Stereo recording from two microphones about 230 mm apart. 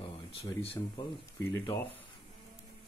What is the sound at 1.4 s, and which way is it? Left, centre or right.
Speech, centre.